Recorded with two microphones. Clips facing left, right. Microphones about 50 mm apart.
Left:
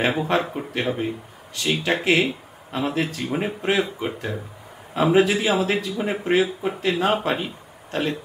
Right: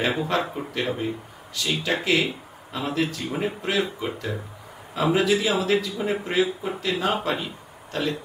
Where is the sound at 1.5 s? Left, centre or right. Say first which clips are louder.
Left 3 dB; left.